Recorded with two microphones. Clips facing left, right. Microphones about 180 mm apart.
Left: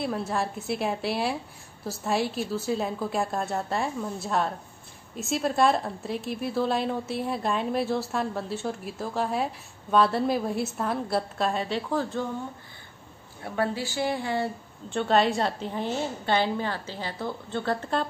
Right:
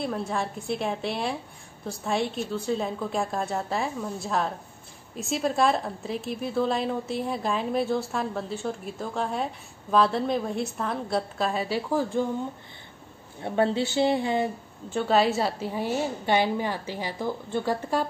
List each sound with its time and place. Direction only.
0.0 s a woman's voice: centre (ahead or behind)
13.4 s speech: 25° right (ahead or behind)
14.9 s a woman's voice: 5° right (ahead or behind)